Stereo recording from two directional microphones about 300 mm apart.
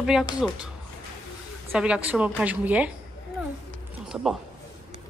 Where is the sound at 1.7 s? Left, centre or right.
Centre.